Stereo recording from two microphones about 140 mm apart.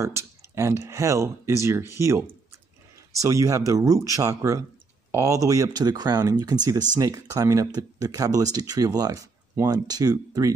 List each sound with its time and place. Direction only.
0.0 s speech: 20° right (ahead or behind)